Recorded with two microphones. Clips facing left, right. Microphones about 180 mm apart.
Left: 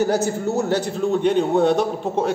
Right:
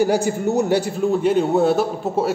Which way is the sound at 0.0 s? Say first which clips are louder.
Right 2 dB; 10° right (ahead or behind).